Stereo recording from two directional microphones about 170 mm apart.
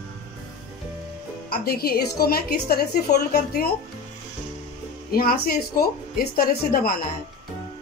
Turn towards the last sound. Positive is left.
turn(degrees=60)  # may be behind; listen again after turning